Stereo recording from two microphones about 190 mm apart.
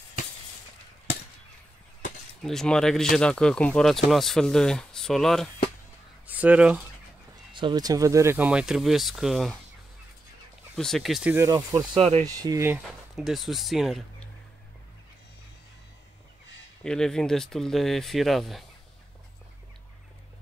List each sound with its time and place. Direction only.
2.4 s speech: 5° left (ahead or behind)
6.2 s speech: 10° right (ahead or behind)
7.5 s speech: 25° right (ahead or behind); by 9.6 s centre (ahead or behind)
10.8 s speech: centre (ahead or behind)
11.3 s speech: 20° right (ahead or behind)
12.0 s speech: 35° right (ahead or behind)
12.3 s speech: 20° right (ahead or behind)
12.8 s speech: centre (ahead or behind)
16.8 s speech: 5° left (ahead or behind)